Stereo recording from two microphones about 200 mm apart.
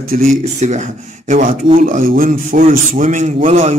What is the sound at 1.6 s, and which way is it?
Speech, 30° right (ahead or behind).